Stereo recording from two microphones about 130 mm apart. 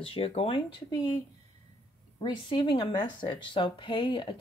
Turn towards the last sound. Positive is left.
turn(degrees=40)  # may be behind; listen again after turning